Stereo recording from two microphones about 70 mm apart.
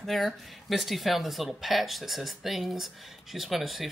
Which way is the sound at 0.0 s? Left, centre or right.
Centre.